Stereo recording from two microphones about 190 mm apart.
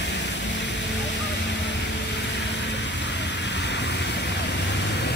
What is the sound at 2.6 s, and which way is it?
Vehicle, 70° left (ahead or behind).